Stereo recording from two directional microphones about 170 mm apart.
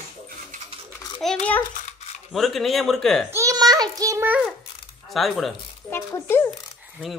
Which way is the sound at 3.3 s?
20° right (ahead or behind).